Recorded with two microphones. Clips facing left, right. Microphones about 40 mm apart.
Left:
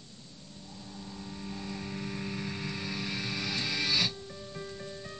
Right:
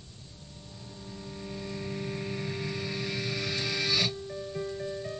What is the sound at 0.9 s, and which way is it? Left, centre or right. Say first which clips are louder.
Vehicle: right 1 dB; centre.